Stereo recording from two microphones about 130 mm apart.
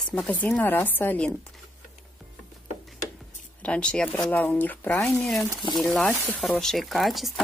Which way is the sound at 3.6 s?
10° left (ahead or behind).